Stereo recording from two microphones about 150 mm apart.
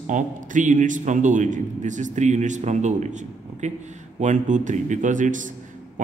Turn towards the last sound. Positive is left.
turn(degrees=-60)  # may be behind; listen again after turning